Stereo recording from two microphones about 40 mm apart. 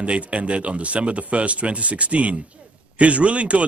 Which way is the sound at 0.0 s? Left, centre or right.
Right.